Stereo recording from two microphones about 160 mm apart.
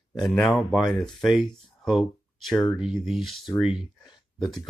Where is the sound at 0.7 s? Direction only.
Centre (ahead or behind).